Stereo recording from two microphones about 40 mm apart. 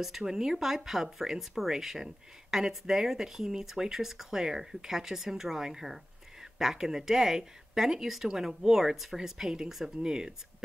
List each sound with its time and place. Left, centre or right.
0.2 s speech: centre
9.9 s speech: centre